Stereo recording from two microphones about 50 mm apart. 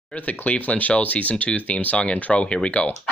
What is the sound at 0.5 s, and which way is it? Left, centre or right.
Speech, left.